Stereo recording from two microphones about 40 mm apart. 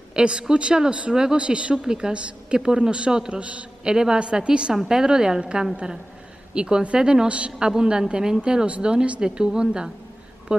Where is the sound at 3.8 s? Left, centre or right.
Centre.